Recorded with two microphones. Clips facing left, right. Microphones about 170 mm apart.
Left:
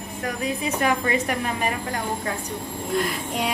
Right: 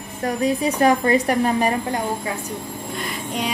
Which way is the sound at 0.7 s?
35° right (ahead or behind).